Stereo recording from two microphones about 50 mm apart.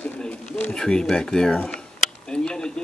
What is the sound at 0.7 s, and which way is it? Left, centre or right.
Speech, centre.